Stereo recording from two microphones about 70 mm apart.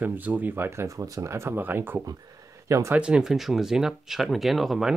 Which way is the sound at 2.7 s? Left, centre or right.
Right.